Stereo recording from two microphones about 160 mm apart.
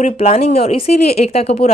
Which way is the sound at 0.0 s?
40° left (ahead or behind).